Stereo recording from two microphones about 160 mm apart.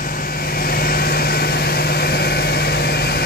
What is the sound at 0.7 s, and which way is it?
Vehicle, 70° left (ahead or behind).